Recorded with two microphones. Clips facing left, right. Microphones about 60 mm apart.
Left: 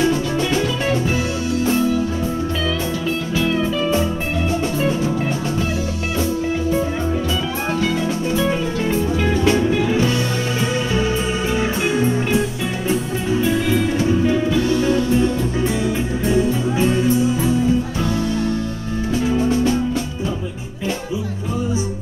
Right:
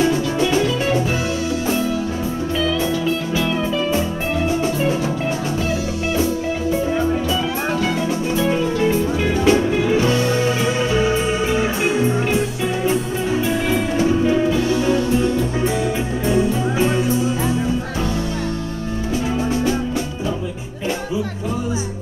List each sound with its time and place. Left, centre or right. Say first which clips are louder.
8.4 s music: right 4 dB; centre
9.9 s music: right 2 dB; right
14.5 s music: even; centre
16.3 s music: even; right